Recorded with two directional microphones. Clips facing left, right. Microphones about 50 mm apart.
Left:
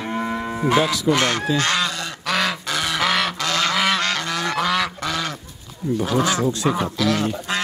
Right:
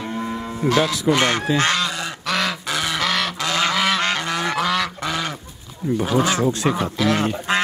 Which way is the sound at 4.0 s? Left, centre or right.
Centre.